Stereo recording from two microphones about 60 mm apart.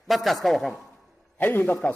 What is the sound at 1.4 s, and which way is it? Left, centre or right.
Speech, left.